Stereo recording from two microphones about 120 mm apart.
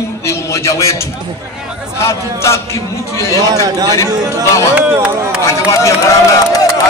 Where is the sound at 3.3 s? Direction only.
30° right (ahead or behind).